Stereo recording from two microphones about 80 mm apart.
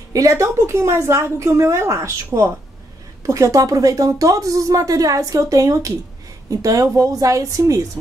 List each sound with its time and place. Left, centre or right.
0.1 s a woman's voice: right